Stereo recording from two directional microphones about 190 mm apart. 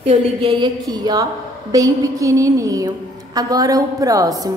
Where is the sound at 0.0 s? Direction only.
30° right (ahead or behind).